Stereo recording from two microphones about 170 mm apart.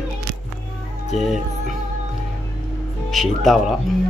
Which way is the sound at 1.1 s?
Centre (ahead or behind).